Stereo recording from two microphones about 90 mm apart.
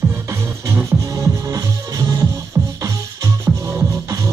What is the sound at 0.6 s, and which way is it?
Music, 40° right (ahead or behind).